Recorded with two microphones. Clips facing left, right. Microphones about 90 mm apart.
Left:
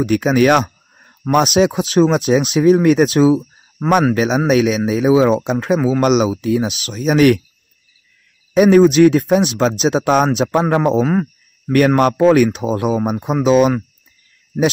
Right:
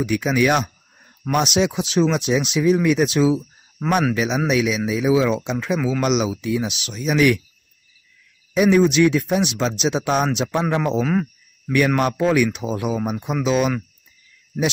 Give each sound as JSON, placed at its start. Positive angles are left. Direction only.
{"t": 0.0, "sound": "speech", "side_deg": 50}
{"t": 8.5, "sound": "speech", "side_deg": 45}
{"t": 11.7, "sound": "speech", "side_deg": 50}